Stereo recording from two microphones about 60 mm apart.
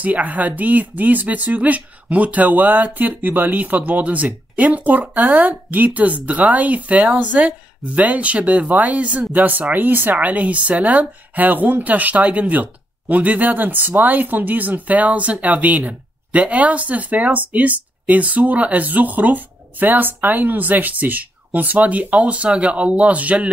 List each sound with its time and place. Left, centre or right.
0.0 s speech: right